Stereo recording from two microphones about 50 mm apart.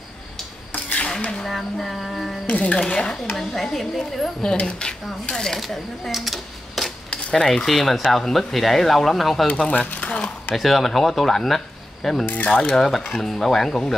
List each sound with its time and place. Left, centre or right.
0.9 s a sound: left
1.5 s speech: centre
2.4 s speech: left
3.3 s speech: centre
4.4 s speech: centre
6.1 s a sound: centre
7.1 s cutlery: left
7.4 s speech: centre
9.5 s speech: left
10.5 s speech: centre
12.4 s speech: left
12.7 s speech: centre